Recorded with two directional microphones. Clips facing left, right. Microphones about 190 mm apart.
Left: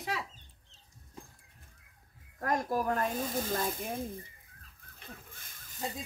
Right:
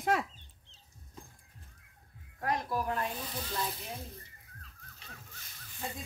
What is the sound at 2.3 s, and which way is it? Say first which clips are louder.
Speech: left 2 dB; 45° left (ahead or behind).